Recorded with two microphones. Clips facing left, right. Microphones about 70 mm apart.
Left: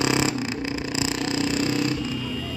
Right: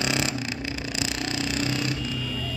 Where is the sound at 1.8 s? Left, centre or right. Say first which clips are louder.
Left 4 dB; centre.